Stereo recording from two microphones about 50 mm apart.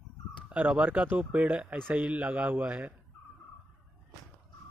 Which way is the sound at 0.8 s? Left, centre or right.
Right.